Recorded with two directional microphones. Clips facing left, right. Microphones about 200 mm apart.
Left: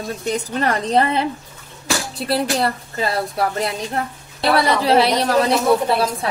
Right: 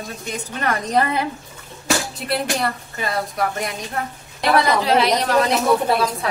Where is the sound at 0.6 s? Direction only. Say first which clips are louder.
Left 1 dB; 25° left (ahead or behind).